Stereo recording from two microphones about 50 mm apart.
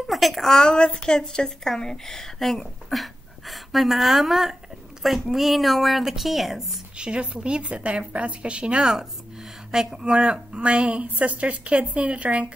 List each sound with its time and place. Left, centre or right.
0.1 s a woman's voice: centre
0.5 s a woman's voice: centre
7.0 s a woman's voice: centre
8.9 s a sound: centre
10.0 s a woman's voice: right